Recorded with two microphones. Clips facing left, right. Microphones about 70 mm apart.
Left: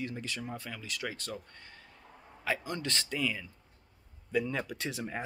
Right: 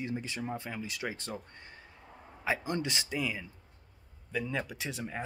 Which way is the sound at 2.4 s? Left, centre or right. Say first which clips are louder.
Right 2 dB; centre.